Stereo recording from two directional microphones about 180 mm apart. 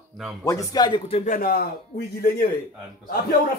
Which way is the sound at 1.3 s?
55° left (ahead or behind).